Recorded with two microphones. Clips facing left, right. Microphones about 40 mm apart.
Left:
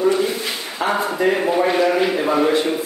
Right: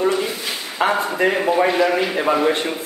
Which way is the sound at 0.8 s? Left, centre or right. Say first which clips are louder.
Right 2 dB; right.